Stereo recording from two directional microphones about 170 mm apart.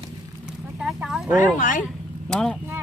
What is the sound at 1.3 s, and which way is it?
Speech, 50° left (ahead or behind).